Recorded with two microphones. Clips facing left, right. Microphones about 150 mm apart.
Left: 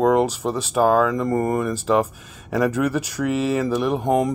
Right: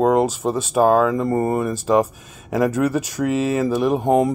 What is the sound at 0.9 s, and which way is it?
Speech, 25° right (ahead or behind).